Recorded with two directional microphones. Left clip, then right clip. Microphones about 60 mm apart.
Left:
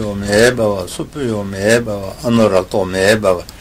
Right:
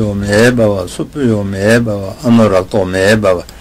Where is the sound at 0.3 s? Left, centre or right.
Right.